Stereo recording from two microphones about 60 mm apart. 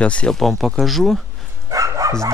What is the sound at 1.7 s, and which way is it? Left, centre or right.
Bow-wow, right.